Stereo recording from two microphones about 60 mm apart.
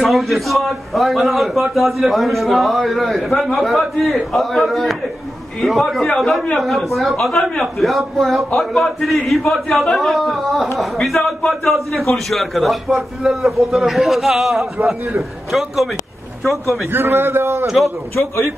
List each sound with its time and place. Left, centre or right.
0.0 s a man's voice: centre
16.9 s a man's voice: right
17.6 s a man's voice: centre
18.1 s a man's voice: left